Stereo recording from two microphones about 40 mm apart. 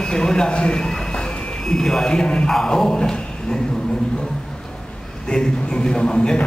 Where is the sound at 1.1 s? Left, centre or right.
Centre.